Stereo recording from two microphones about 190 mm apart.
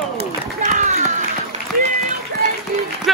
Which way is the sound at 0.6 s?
40° right (ahead or behind).